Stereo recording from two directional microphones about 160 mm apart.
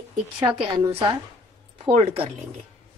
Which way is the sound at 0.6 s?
35° right (ahead or behind).